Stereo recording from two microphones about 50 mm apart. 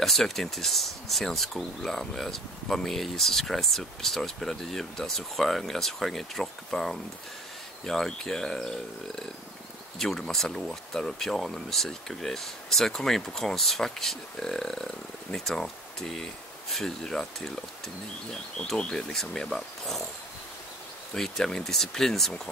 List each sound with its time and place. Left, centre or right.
0.0 s speech: centre
18.8 s speech: centre
21.1 s speech: centre